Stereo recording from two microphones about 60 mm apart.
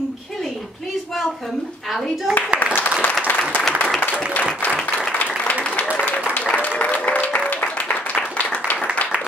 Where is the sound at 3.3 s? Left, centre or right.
Left.